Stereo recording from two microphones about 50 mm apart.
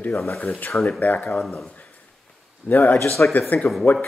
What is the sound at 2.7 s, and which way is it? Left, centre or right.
Speech, left.